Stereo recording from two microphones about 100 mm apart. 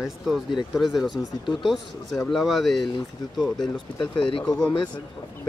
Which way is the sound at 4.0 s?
55° left (ahead or behind).